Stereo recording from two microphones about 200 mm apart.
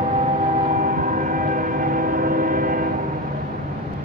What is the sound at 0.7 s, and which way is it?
Train, 40° right (ahead or behind).